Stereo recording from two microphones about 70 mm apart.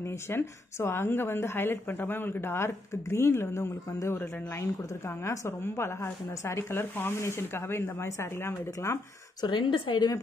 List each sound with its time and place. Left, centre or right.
0.3 s speech: left
5.6 s speech: left
9.4 s a woman's voice: left